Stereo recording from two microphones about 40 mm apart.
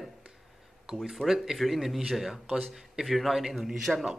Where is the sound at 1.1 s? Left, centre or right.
Centre.